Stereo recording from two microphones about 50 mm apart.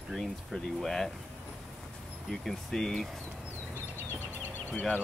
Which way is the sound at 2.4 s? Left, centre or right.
Centre.